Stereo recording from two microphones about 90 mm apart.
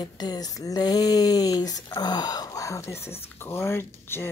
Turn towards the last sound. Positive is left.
turn(degrees=25)  # may be behind; listen again after turning